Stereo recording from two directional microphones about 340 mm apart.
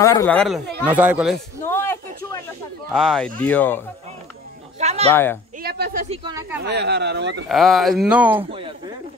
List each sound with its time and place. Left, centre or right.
0.0 s speech: centre
4.7 s a sound: centre
5.1 s speech: centre
5.6 s speech: right
6.2 s speech: centre
6.6 s speech: right
7.4 s speech: centre